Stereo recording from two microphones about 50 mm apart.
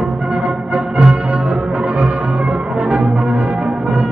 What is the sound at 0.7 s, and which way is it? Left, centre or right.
Music, centre.